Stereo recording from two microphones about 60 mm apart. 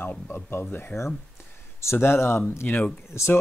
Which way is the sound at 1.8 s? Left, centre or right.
Left.